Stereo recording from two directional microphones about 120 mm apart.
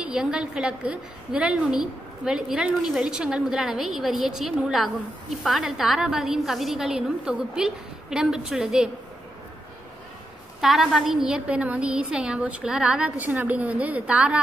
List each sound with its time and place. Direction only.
0.0 s a woman's voice: 5° right (ahead or behind)
10.6 s a woman's voice: 5° right (ahead or behind)